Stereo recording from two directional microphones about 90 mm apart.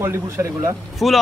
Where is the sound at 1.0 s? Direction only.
Centre (ahead or behind).